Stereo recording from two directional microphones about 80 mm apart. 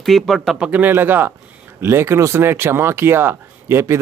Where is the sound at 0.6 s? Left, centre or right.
Right.